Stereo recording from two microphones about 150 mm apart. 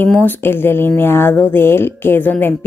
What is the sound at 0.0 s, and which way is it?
Speech, 10° left (ahead or behind).